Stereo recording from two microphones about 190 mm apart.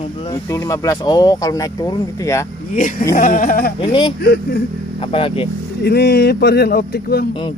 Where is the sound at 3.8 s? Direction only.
25° left (ahead or behind).